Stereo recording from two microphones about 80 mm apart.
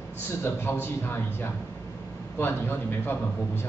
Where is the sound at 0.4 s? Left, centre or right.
Left.